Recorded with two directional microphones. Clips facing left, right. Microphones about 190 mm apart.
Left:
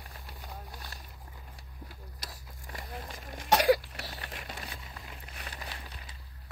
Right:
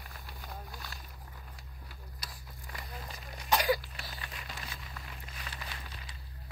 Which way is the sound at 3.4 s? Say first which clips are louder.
Left 5 dB; 75° left (ahead or behind).